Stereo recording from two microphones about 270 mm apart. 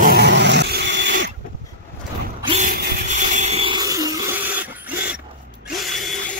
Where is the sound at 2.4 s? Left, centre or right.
Right.